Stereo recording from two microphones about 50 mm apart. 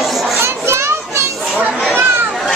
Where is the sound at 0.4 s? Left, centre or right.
Right.